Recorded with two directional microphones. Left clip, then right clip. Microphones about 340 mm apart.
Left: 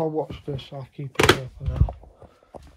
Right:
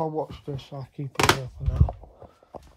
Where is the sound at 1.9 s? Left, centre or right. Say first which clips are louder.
Right 1 dB; left.